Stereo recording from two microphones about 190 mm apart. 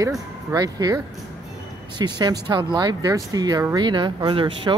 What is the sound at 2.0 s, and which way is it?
Speech, 20° right (ahead or behind).